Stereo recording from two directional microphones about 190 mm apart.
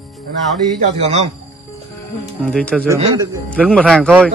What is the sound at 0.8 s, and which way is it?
Speech, 35° right (ahead or behind).